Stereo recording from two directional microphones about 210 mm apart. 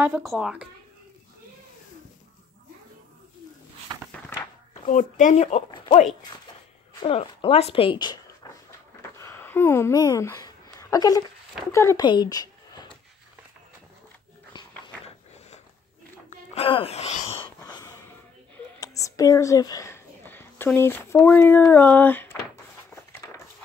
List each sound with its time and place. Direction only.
0.0 s speech: 5° right (ahead or behind)
4.8 s speech: 35° left (ahead or behind); by 8.5 s 20° left (ahead or behind)
9.2 s a sound: 10° left (ahead or behind)
11.7 s speech: 15° left (ahead or behind)
14.5 s dog: 20° left (ahead or behind)
16.3 s wail: 25° left (ahead or behind)
17.6 s wheeze: 20° left (ahead or behind)
18.8 s speech: 15° left (ahead or behind)
22.9 s a sound: 15° left (ahead or behind)